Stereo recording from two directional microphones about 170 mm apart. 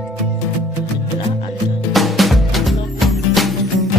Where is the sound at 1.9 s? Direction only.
Centre (ahead or behind).